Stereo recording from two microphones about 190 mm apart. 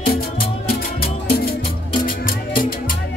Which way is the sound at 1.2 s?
50° left (ahead or behind).